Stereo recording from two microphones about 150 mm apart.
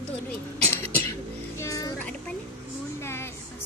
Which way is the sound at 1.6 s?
20° left (ahead or behind).